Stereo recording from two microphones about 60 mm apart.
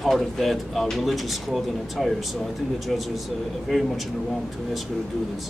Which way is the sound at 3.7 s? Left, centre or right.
Centre.